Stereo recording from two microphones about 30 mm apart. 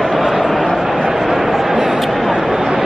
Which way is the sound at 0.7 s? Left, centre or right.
Centre.